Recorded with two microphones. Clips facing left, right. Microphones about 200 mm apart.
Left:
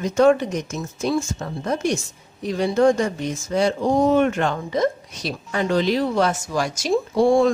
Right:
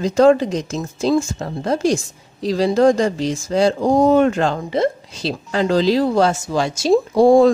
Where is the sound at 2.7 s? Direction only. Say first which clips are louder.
Right 2 dB; 35° right (ahead or behind).